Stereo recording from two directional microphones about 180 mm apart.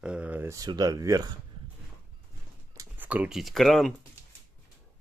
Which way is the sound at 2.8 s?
10° right (ahead or behind).